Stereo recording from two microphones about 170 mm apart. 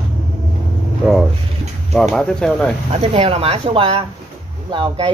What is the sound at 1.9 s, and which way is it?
Speech, centre (ahead or behind).